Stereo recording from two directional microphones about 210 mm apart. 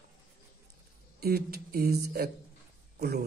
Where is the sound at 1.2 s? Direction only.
50° right (ahead or behind).